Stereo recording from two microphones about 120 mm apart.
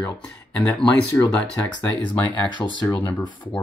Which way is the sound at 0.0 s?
10° left (ahead or behind).